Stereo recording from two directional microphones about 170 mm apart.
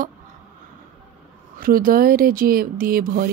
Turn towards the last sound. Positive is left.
turn(degrees=-60)  # may be behind; listen again after turning